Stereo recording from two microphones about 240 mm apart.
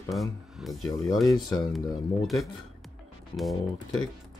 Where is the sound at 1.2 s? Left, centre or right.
Centre.